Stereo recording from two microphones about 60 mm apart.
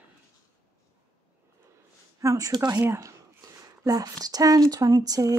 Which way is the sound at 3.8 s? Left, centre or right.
Right.